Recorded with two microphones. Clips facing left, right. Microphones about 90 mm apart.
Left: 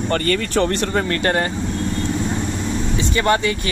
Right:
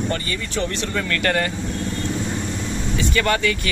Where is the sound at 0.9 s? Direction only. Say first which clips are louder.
Left 3 dB; 30° left (ahead or behind).